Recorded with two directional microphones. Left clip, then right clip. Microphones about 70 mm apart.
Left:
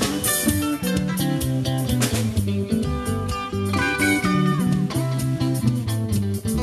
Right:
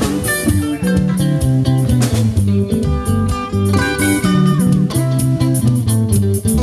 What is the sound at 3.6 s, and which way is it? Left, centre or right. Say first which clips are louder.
Music: right 4 dB; centre.